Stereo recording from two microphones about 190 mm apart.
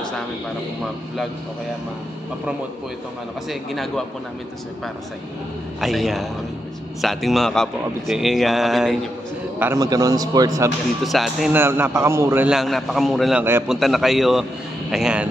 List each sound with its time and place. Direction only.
3.4 s a man's voice: centre (ahead or behind)
5.8 s a man's voice: centre (ahead or behind)
9.6 s a man's voice: 15° right (ahead or behind)
11.1 s a man's voice: centre (ahead or behind)